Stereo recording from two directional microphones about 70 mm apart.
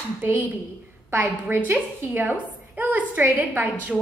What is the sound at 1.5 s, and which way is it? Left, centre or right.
A woman's voice, right.